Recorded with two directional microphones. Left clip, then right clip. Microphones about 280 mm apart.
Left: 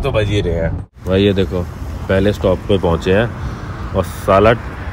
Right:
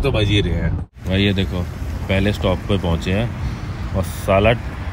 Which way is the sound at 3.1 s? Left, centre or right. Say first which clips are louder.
Left 10 dB; right.